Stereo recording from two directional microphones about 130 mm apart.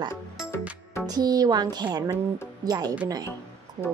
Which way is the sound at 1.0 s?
30° right (ahead or behind).